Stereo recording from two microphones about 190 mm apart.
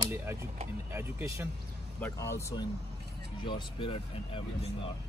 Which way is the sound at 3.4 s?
25° left (ahead or behind).